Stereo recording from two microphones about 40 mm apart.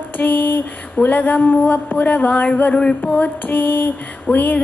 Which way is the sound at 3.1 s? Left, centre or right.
Left.